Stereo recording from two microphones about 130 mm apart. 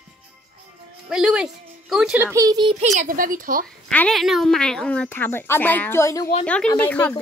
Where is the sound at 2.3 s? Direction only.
30° right (ahead or behind).